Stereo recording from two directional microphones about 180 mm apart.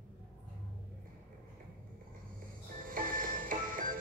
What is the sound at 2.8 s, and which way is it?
Music, 50° right (ahead or behind).